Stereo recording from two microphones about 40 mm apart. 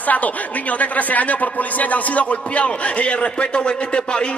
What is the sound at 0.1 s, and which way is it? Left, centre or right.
A man's voice, left.